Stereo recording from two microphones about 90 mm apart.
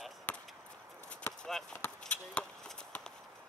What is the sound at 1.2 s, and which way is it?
Basketball bounce, 30° left (ahead or behind).